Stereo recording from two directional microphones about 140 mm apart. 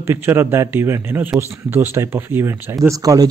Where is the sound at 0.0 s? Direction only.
15° right (ahead or behind).